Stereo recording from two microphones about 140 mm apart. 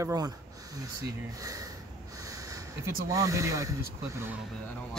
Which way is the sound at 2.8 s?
25° right (ahead or behind).